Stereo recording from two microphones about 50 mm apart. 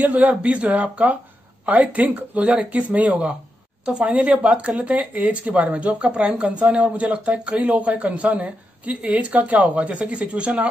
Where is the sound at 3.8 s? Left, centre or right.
Centre.